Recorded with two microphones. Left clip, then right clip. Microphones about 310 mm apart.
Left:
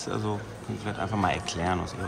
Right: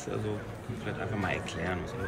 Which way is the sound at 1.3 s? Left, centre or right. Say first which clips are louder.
Left 6 dB; centre.